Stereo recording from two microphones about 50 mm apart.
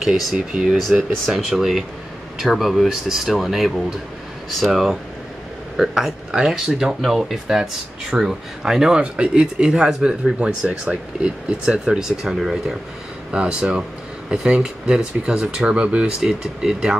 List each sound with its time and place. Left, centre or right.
0.0 s speech: centre
10.7 s speech: right
11.6 s speech: centre
12.4 s speech: centre
13.3 s speech: centre